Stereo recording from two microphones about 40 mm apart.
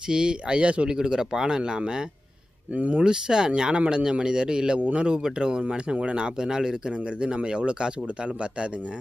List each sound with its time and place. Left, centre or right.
0.1 s speech: right
0.8 s speech: centre
2.7 s speech: right
3.0 s speech: centre
4.7 s speech: right